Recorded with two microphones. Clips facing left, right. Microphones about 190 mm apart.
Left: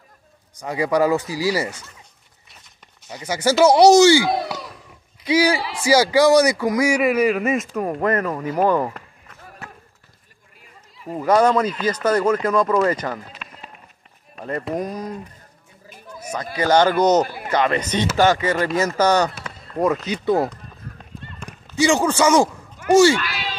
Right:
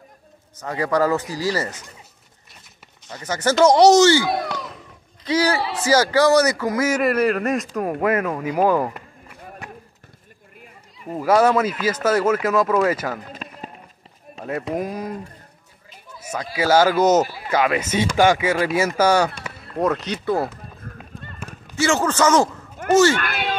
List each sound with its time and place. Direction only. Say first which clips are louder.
0.6 s speech: left 1 dB; 10° left (ahead or behind)
3.1 s a man's voice: left 1 dB; 10° left (ahead or behind); by 9.4 s 5° right (ahead or behind)
9.6 s run: right 1 dB; 15° right (ahead or behind)
11.1 s speech: even; 5° right (ahead or behind)
13.3 s run: right 6 dB; 40° right (ahead or behind)
14.4 s a man's voice: even; 5° right (ahead or behind)
16.2 s a sound: even; 10° right (ahead or behind)
16.5 s a man's voice: even; 5° right (ahead or behind)
21.7 s speech: left 2 dB; 15° left (ahead or behind)
23.1 s speech: right 2 dB; 55° right (ahead or behind)